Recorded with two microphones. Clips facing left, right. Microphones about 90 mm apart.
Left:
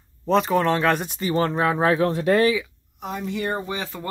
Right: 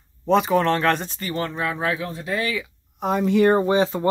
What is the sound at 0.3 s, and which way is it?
Speech, centre (ahead or behind).